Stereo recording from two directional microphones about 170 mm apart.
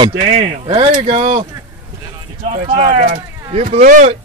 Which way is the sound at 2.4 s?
45° right (ahead or behind).